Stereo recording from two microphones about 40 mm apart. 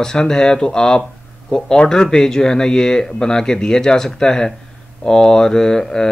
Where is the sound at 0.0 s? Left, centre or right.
Centre.